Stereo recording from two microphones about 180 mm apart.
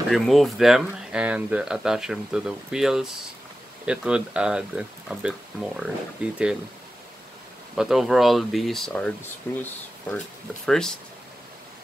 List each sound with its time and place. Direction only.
0.1 s speech: centre (ahead or behind)
7.7 s speech: centre (ahead or behind)